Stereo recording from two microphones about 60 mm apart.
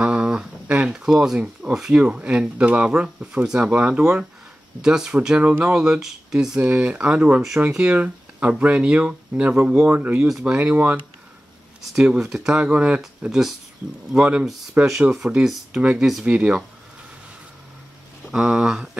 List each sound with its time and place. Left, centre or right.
0.0 s a sound: centre
1.0 s speech: centre; by 2.9 s right
2.9 s speech: centre
6.6 s speech: centre
12.2 s speech: centre
13.3 s speech: centre
15.8 s speech: centre
18.3 s speech: centre